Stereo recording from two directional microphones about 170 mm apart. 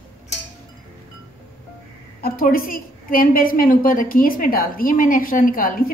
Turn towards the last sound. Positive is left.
turn(degrees=55)  # may be behind; listen again after turning